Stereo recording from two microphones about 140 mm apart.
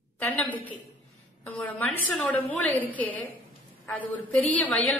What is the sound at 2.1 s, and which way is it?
A woman's voice, 10° left (ahead or behind).